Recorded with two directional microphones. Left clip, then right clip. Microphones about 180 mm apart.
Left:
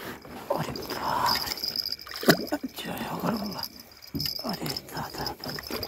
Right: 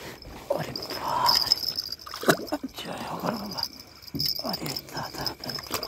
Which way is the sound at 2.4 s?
5° right (ahead or behind).